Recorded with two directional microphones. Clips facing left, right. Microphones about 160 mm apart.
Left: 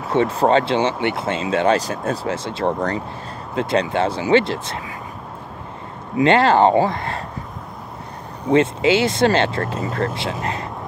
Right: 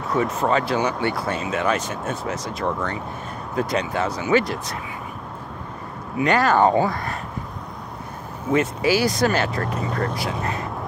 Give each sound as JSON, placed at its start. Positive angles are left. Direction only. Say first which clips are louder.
{"t": 0.1, "sound": "speech", "louder": "left 5 dB", "side_deg": 30}
{"t": 6.1, "sound": "speech", "louder": "left 4 dB", "side_deg": 25}
{"t": 8.5, "sound": "speech", "louder": "left 4 dB", "side_deg": 25}